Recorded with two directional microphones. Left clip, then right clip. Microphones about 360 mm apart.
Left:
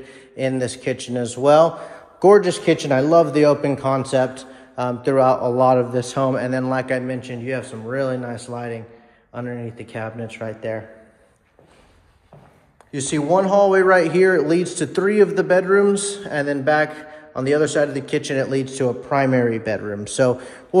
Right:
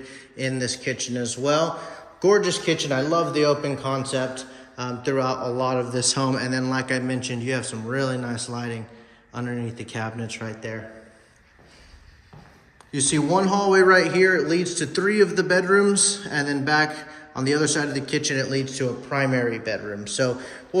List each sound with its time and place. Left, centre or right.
0.0 s a man's voice: centre
12.9 s a man's voice: centre